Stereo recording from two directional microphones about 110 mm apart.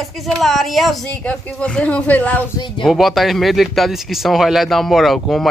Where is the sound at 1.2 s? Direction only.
10° left (ahead or behind).